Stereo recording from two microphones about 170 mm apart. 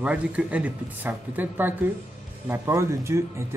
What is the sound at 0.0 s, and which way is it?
Speech, 5° right (ahead or behind).